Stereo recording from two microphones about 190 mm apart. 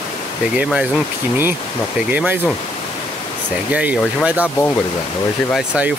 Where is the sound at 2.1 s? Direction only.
10° right (ahead or behind).